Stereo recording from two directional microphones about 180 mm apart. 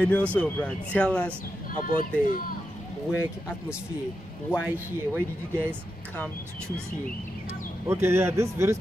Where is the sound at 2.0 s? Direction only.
50° left (ahead or behind).